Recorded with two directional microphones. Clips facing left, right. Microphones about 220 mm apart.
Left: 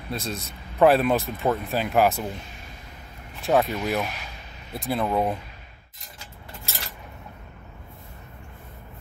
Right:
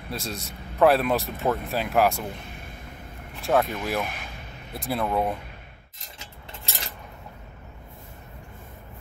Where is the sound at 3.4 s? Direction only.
Centre (ahead or behind).